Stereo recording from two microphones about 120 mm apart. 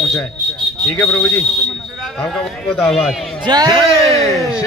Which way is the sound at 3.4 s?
35° right (ahead or behind).